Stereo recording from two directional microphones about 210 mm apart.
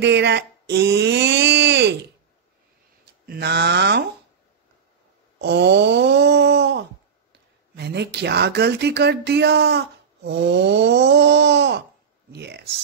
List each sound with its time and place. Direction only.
0.0 s speech: 55° right (ahead or behind)
3.3 s speech: 50° right (ahead or behind)
5.4 s wail: 55° right (ahead or behind)
7.7 s speech: 50° right (ahead or behind)